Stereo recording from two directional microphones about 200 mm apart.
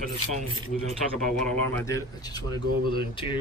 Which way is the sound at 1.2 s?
5° left (ahead or behind).